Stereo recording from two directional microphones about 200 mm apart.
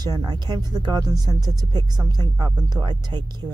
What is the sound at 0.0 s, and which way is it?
Speech, 20° right (ahead or behind).